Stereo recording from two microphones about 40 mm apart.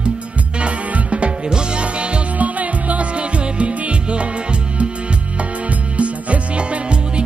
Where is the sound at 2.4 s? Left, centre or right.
Right.